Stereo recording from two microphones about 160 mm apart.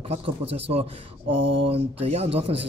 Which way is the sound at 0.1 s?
40° right (ahead or behind).